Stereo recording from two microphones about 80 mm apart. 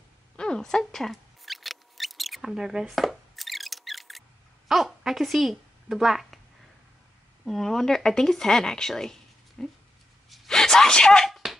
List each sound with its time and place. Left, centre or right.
0.4 s mouse: centre
4.6 s speech: centre
7.4 s speech: centre
10.3 s a sound: centre